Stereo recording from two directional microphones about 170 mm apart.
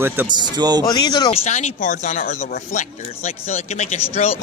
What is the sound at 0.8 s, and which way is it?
Speech, 25° left (ahead or behind).